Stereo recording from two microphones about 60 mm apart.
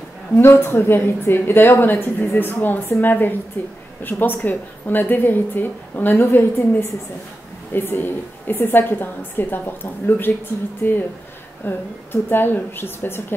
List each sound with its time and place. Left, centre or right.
0.4 s a woman's voice: left
6.2 s a woman's voice: left